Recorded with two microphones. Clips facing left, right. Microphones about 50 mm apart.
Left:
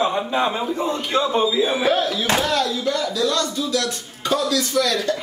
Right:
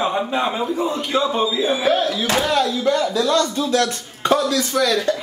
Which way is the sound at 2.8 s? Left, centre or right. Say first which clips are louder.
Right 3 dB; right.